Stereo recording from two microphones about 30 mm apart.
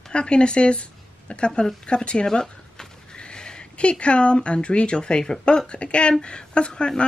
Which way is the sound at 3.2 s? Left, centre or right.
Left.